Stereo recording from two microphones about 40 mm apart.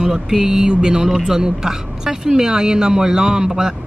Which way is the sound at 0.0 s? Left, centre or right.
Centre.